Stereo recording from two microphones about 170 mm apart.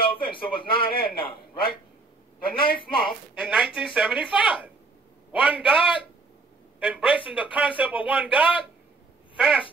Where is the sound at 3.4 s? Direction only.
5° right (ahead or behind).